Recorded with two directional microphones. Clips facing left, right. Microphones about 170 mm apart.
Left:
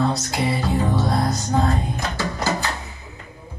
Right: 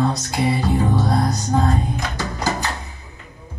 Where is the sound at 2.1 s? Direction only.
15° right (ahead or behind).